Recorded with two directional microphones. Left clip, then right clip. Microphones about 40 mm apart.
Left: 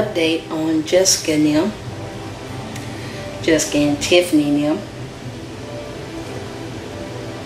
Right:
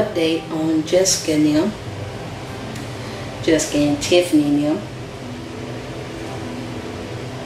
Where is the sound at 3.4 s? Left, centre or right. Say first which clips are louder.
Left 1 dB; centre.